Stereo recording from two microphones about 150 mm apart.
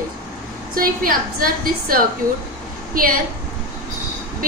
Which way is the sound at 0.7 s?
70° right (ahead or behind).